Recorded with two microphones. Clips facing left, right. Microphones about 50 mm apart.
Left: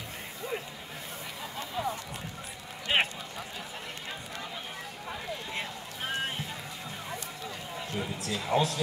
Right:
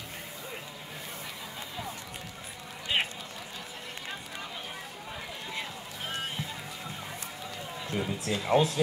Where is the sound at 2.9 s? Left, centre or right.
Left.